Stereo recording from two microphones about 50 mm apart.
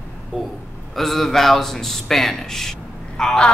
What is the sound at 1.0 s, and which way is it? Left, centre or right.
Speech, centre.